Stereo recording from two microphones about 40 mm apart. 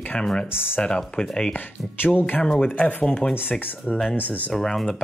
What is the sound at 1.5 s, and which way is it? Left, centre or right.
Speech, left.